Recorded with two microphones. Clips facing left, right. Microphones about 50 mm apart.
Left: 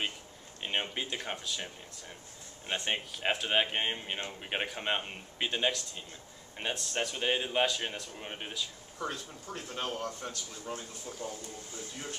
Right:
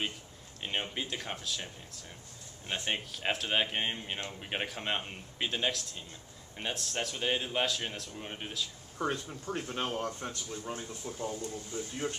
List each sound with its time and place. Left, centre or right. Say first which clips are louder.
0.6 s speech: left 1 dB; centre
2.7 s speech: left 1 dB; centre
9.0 s speech: right 4 dB; right